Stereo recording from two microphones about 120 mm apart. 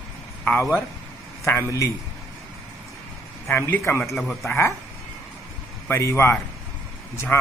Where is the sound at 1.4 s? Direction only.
25° left (ahead or behind).